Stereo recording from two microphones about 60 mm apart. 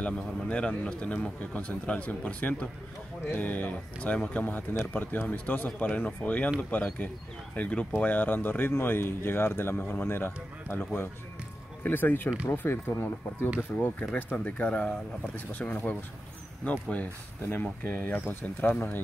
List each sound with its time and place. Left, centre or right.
0.0 s speech: centre; by 10.8 s left
11.8 s speech: left